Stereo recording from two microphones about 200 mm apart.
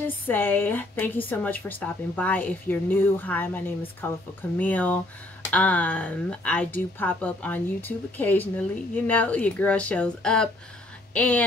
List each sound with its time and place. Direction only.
0.0 s speech: 10° left (ahead or behind)